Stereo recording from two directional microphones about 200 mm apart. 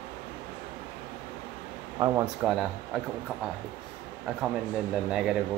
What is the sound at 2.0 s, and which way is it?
Speech, 15° right (ahead or behind).